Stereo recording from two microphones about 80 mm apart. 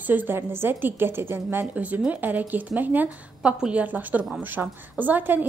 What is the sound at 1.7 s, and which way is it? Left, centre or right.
A woman's voice, centre.